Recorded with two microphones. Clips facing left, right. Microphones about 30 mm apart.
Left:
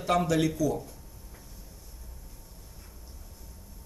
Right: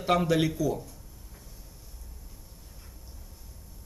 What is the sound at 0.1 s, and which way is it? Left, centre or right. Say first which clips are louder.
Speech: even; centre.